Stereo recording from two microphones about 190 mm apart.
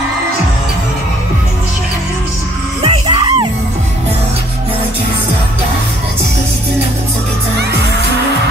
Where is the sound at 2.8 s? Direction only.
30° right (ahead or behind).